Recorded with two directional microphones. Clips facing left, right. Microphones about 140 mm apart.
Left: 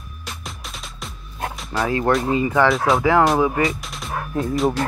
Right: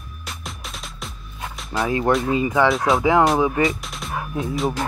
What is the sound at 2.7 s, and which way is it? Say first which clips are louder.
Speech: left 1 dB; centre (ahead or behind).